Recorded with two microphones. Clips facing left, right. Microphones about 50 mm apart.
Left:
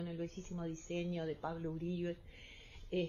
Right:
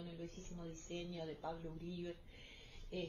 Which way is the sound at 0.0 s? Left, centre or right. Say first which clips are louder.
Left 7 dB; left.